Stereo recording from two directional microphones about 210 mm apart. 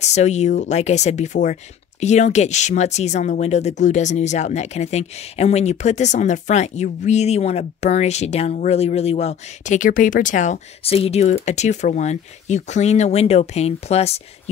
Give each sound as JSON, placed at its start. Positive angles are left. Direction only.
{"t": 0.0, "sound": "speech", "side_deg": 30}